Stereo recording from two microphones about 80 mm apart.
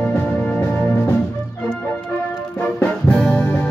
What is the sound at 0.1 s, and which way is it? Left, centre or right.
Music, left.